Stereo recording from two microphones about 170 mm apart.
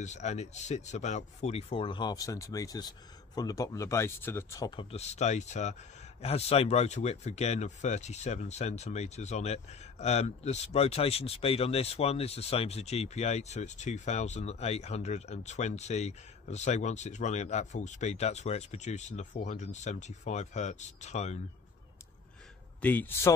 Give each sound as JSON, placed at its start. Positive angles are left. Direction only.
{"t": 0.0, "sound": "speech", "side_deg": 45}
{"t": 4.9, "sound": "speech", "side_deg": 40}
{"t": 22.8, "sound": "a man's voice", "side_deg": 10}